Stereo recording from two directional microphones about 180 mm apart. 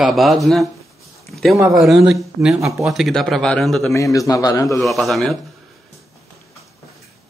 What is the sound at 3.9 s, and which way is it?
Speech, 20° left (ahead or behind).